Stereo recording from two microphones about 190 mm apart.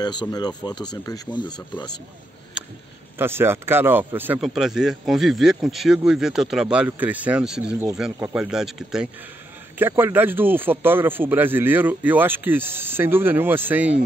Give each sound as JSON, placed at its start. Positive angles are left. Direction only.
{"t": 0.0, "sound": "speech", "side_deg": 20}
{"t": 3.2, "sound": "a man's voice", "side_deg": -10}